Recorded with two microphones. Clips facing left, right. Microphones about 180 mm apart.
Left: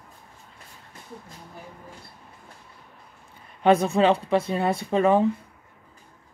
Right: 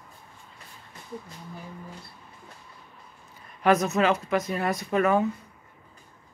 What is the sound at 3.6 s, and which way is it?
Speech, 30° left (ahead or behind).